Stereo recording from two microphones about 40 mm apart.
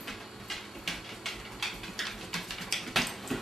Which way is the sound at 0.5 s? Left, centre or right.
Centre.